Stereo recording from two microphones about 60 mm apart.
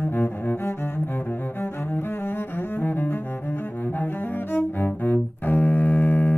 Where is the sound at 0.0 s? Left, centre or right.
Left.